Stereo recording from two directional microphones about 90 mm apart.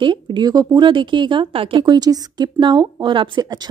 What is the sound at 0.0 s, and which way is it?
Speech, 60° right (ahead or behind).